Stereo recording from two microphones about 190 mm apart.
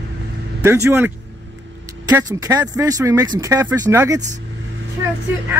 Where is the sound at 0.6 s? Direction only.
10° right (ahead or behind).